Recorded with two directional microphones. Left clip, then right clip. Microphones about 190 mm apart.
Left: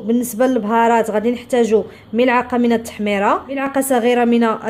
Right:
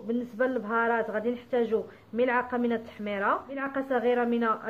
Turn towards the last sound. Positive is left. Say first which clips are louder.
# left 11 dB
turn(degrees=40)  # may be behind; listen again after turning